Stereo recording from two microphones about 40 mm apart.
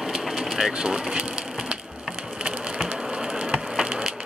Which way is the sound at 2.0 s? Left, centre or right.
Centre.